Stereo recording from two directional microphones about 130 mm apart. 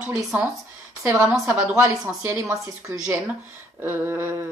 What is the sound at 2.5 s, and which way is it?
Speech, 25° right (ahead or behind).